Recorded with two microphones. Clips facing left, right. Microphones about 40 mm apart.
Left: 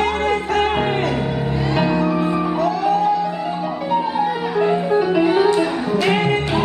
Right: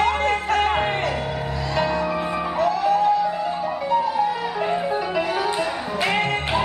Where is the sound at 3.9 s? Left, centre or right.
Left.